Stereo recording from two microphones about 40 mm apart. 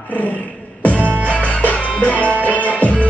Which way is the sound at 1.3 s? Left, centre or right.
Left.